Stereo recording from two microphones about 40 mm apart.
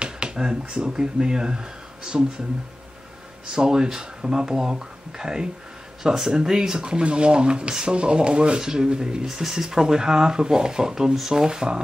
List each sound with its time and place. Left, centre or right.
0.0 s speech: right
3.5 s speech: centre